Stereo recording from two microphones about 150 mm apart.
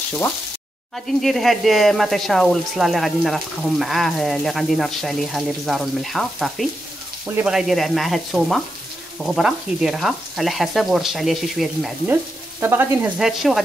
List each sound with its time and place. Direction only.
0.9 s speech: centre (ahead or behind)
12.1 s stir: 15° right (ahead or behind)
13.2 s speech: centre (ahead or behind)